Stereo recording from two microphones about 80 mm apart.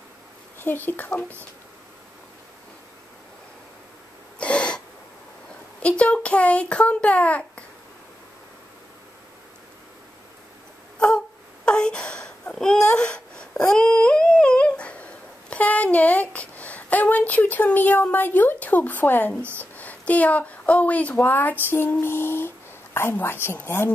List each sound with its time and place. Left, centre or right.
0.6 s speech: left
4.4 s a sound: centre
5.8 s a child's voice: centre
11.6 s wail: centre
13.7 s a sound: centre
15.5 s a woman's voice: centre